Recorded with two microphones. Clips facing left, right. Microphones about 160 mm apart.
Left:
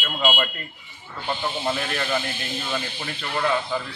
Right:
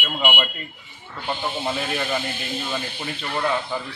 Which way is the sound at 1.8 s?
10° right (ahead or behind).